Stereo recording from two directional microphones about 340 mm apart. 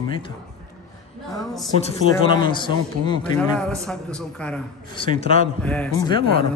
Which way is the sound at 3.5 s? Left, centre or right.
Centre.